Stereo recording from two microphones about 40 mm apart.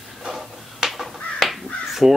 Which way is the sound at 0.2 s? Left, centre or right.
Centre.